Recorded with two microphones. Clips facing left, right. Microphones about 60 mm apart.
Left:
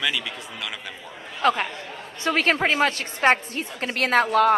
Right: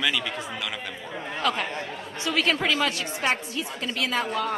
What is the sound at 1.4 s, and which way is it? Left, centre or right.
A woman's voice, left.